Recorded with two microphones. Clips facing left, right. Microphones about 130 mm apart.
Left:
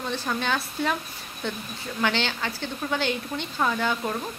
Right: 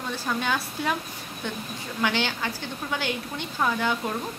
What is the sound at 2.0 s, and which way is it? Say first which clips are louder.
Speech: even; 10° right (ahead or behind).